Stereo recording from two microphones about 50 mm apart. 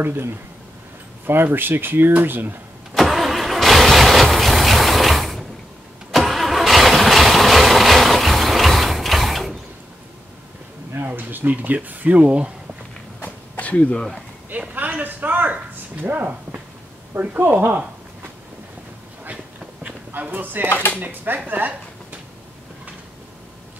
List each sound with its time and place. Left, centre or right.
0.0 s speech: right
2.9 s vehicle: centre
11.1 s speech: right
13.2 s a sound: left
13.9 s speech: centre
14.7 s a man's voice: right
20.2 s a man's voice: right
20.6 s speech: left
21.0 s a man's voice: right
21.5 s a sound: right